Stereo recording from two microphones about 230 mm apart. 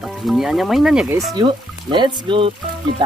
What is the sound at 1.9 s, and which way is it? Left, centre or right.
Speech, right.